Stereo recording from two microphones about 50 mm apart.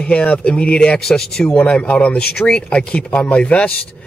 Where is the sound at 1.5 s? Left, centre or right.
Left.